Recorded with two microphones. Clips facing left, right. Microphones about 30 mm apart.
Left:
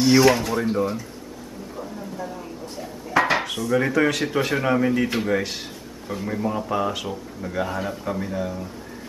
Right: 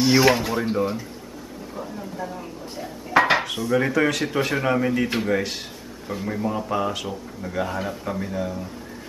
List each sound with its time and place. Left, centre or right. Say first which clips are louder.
0.0 s speech: left 1 dB; centre
1.8 s a sound: right 1 dB; centre
3.1 s dishes: right 2 dB; centre
3.3 s dishes: even; centre
3.7 s speech: even; centre